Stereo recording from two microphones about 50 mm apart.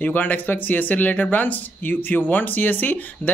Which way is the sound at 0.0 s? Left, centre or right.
Left.